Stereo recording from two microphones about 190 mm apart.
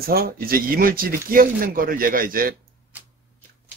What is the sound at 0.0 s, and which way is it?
Speech, 55° right (ahead or behind).